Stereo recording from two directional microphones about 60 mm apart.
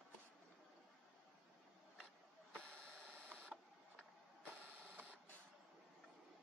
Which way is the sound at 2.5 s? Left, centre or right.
Centre.